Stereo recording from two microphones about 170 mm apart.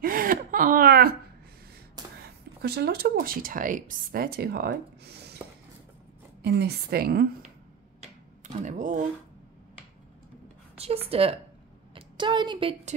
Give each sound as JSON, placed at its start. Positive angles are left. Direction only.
{"t": 0.0, "sound": "whimper", "side_deg": -55}
{"t": 2.2, "sound": "speech", "side_deg": -70}
{"t": 6.4, "sound": "a woman's voice", "side_deg": -75}
{"t": 8.0, "sound": "tick-tock", "side_deg": -45}
{"t": 10.8, "sound": "a woman's voice", "side_deg": -35}